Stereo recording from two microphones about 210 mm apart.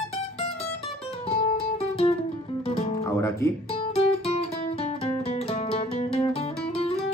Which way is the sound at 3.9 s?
30° left (ahead or behind).